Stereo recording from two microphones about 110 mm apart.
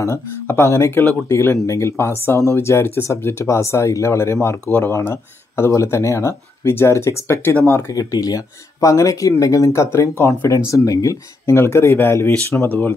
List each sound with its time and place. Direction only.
0.0 s speech: 25° left (ahead or behind)
7.9 s speech: 35° left (ahead or behind)